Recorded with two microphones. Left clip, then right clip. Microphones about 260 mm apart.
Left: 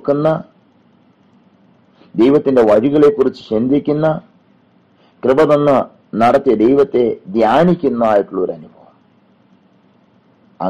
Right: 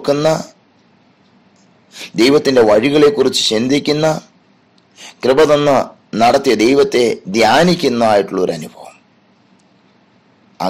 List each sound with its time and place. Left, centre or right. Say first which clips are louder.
0.0 s a man's voice: right 1 dB; right
2.0 s a man's voice: right 1 dB; right